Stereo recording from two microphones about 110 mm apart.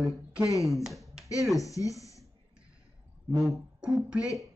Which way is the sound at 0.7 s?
Centre (ahead or behind).